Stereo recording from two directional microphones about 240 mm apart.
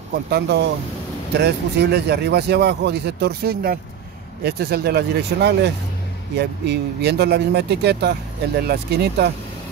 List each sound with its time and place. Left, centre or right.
0.3 s speech: right